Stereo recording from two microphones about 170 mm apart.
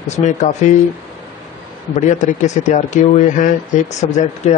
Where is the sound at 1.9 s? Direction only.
45° left (ahead or behind).